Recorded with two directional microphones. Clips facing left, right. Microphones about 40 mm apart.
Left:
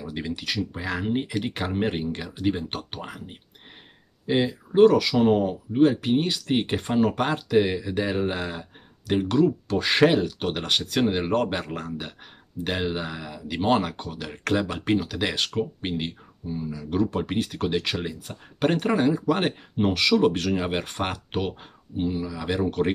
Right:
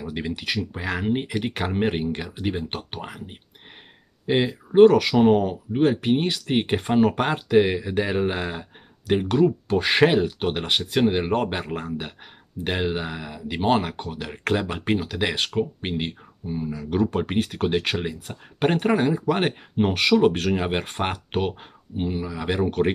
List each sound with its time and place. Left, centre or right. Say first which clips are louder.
0.0 s speech: right 2 dB; right
4.3 s speech: right 2 dB; right
14.3 s speech: even; centre